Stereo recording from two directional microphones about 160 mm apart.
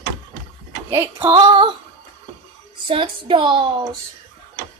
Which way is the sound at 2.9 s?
35° right (ahead or behind).